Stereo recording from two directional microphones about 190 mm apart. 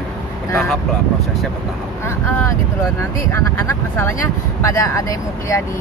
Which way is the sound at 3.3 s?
15° left (ahead or behind).